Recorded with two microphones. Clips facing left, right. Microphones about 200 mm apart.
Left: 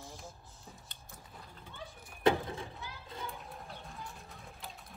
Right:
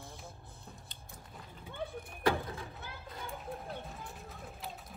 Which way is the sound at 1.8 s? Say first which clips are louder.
Right 9 dB; 60° right (ahead or behind).